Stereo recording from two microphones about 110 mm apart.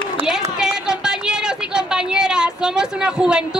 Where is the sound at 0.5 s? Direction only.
5° right (ahead or behind).